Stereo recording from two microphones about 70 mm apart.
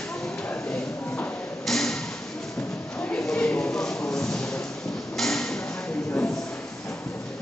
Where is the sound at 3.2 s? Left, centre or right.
Centre.